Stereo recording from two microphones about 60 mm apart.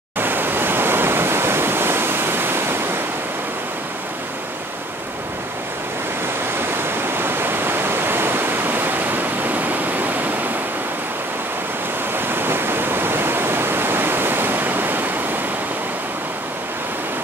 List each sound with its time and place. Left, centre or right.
0.2 s waves: right
6.8 s waterfall: right
12.2 s waterfall: right